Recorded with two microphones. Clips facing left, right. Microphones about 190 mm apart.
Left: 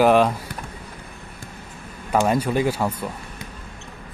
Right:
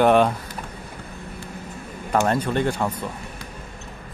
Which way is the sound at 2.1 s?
10° left (ahead or behind).